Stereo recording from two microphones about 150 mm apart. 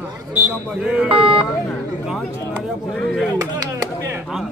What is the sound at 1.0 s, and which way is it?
Speech, 35° right (ahead or behind).